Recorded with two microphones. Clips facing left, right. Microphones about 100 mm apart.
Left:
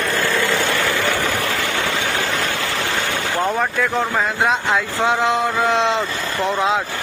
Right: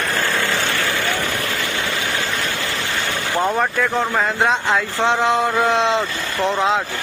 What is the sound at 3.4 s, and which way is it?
Speech, centre (ahead or behind).